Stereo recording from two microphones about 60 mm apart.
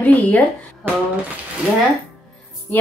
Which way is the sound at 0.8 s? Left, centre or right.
Right.